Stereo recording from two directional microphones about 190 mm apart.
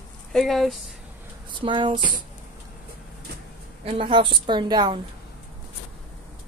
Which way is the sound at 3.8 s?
30° right (ahead or behind).